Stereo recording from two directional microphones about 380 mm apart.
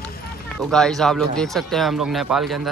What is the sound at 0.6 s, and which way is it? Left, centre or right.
Speech, centre.